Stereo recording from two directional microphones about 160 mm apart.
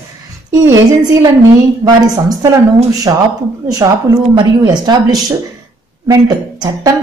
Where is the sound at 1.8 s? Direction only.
20° right (ahead or behind).